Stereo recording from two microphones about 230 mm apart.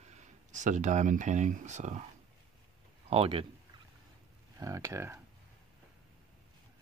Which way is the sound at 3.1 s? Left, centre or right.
Right.